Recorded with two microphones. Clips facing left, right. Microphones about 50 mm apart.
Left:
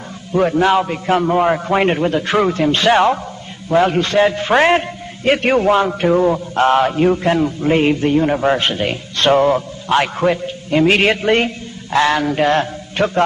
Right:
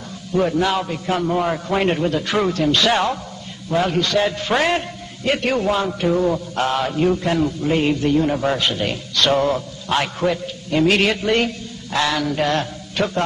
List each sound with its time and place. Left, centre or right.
0.3 s a man's voice: left
6.2 s a man's voice: left
6.6 s a man's voice: left